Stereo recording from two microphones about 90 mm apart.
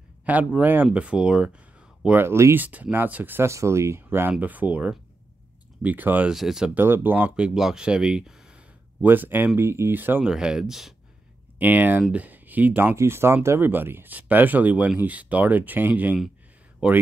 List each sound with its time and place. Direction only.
0.2 s speech: 15° right (ahead or behind)
2.0 s speech: 25° right (ahead or behind)
2.6 s speech: 20° right (ahead or behind)
6.3 s speech: 5° right (ahead or behind)
6.7 s speech: 20° right (ahead or behind)
9.0 s speech: 20° right (ahead or behind)
10.3 s speech: 5° right (ahead or behind)
11.5 s speech: 20° right (ahead or behind)